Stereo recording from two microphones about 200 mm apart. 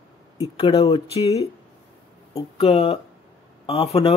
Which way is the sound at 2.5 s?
30° left (ahead or behind).